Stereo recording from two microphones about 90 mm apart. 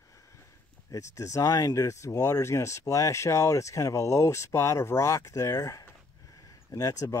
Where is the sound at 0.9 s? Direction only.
40° left (ahead or behind).